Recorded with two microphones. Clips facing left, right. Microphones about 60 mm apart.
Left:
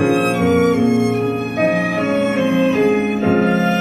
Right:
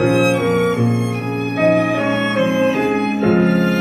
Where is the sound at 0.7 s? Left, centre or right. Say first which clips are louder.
Left 4 dB; left.